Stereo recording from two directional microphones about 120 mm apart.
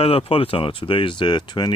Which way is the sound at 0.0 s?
55° left (ahead or behind).